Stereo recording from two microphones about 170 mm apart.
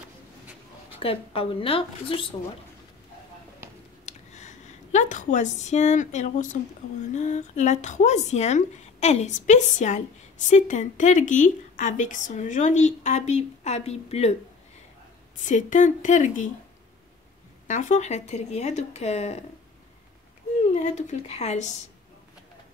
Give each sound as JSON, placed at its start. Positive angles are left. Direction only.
{"t": 0.9, "sound": "speech", "side_deg": 35}
{"t": 3.6, "sound": "a sound", "side_deg": -15}
{"t": 4.0, "sound": "a sound", "side_deg": 45}
{"t": 7.2, "sound": "speech", "side_deg": 45}
{"t": 15.4, "sound": "speech", "side_deg": 45}
{"t": 17.6, "sound": "speech", "side_deg": 45}
{"t": 20.7, "sound": "speech", "side_deg": 45}